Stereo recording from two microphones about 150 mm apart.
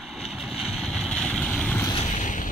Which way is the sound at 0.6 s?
Centre (ahead or behind).